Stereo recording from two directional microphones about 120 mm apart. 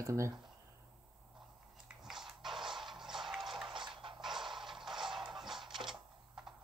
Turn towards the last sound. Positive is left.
turn(degrees=-5)  # may be behind; listen again after turning